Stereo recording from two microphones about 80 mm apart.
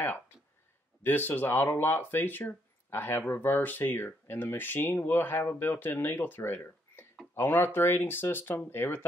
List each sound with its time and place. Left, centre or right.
1.0 s speech: left